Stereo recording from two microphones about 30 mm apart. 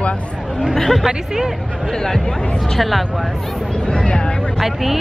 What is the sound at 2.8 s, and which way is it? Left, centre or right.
Speech, centre.